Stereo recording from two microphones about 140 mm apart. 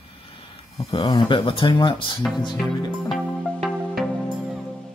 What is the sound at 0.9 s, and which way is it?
Speech, 35° left (ahead or behind).